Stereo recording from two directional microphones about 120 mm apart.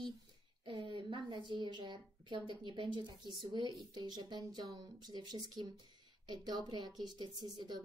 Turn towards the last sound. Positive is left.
turn(degrees=-35)  # may be behind; listen again after turning